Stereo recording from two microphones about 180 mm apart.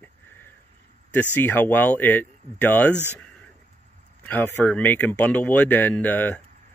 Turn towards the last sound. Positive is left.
turn(degrees=10)  # may be behind; listen again after turning